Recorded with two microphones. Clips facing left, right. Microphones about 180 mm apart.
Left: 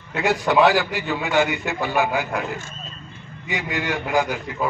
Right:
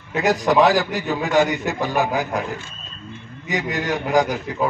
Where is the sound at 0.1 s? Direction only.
40° right (ahead or behind).